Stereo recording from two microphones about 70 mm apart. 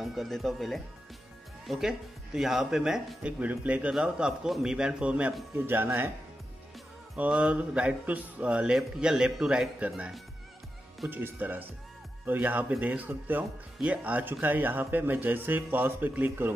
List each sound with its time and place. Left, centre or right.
0.0 s speech: centre
3.3 s speech: right
5.6 s speech: right
7.2 s speech: centre
11.1 s speech: right